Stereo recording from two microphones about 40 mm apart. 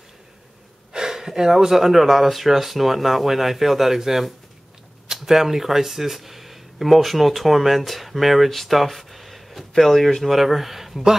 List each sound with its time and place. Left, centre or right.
0.9 s speech: centre